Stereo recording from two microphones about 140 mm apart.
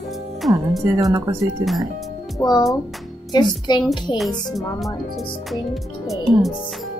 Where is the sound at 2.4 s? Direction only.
30° left (ahead or behind).